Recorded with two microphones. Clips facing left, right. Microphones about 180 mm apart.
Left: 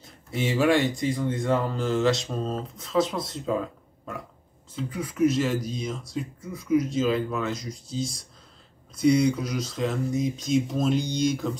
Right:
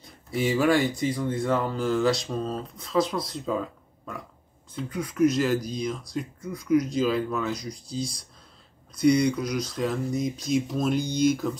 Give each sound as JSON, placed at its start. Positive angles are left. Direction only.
{"t": 0.0, "sound": "speech", "side_deg": 0}
{"t": 4.7, "sound": "speech", "side_deg": 5}